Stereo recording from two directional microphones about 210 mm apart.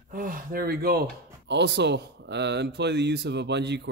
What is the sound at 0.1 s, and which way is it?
Speech, 40° right (ahead or behind).